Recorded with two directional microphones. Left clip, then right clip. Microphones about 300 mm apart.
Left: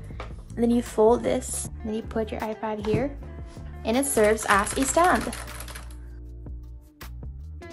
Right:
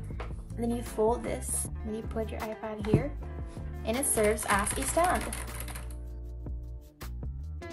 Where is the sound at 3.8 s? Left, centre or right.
Left.